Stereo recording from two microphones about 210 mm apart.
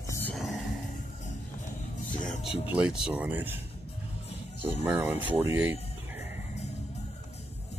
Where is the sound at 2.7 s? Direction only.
5° right (ahead or behind).